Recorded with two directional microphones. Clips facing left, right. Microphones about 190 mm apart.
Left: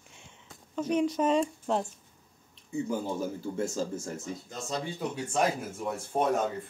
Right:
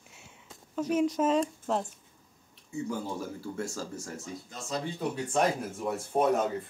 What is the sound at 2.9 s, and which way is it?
Speech, 20° left (ahead or behind).